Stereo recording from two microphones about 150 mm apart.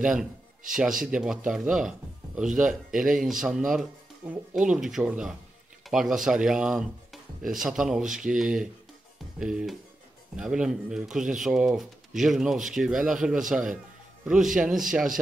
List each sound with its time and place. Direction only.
0.0 s speech: 5° right (ahead or behind)